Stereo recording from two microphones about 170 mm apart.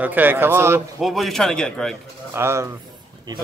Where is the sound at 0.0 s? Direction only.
10° right (ahead or behind).